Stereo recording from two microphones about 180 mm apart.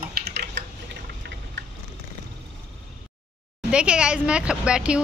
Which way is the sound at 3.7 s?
5° right (ahead or behind).